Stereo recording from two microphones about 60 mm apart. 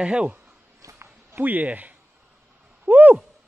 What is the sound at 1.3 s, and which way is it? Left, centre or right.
Speech, right.